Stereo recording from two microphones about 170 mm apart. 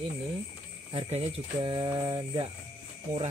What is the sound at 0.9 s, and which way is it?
Mantra, 35° right (ahead or behind).